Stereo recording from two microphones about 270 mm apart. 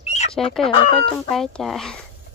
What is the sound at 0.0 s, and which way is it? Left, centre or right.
Chicken, left.